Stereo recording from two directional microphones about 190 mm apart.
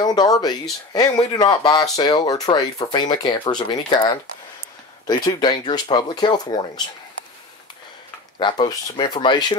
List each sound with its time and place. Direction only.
0.0 s speech: 20° left (ahead or behind)
8.4 s speech: 25° left (ahead or behind)